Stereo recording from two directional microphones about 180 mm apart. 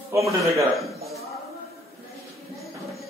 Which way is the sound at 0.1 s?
15° right (ahead or behind).